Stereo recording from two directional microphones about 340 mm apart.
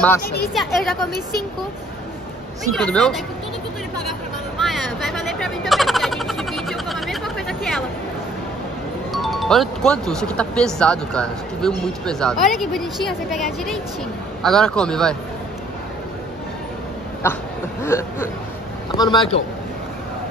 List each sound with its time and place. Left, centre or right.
0.2 s speech: left
0.6 s speech: centre
2.7 s speech: centre
4.6 s a sound: centre
9.1 s speech: centre
17.2 s chuckle: centre